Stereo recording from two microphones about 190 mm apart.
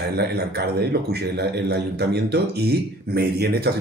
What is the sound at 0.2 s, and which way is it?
A man's voice, 55° right (ahead or behind).